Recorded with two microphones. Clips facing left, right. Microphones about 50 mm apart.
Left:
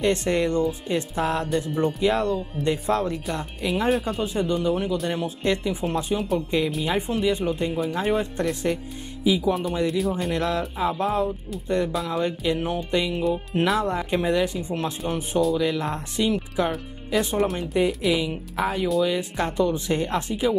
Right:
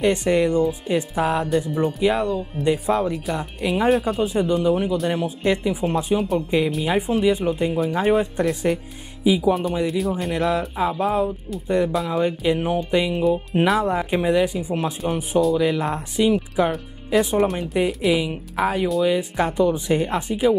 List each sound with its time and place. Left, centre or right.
0.0 s speech: centre
9.5 s speech: centre
10.3 s speech: centre